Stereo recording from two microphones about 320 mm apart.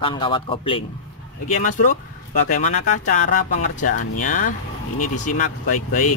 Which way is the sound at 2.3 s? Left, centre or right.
Left.